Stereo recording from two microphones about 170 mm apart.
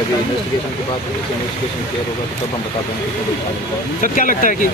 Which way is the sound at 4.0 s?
50° left (ahead or behind).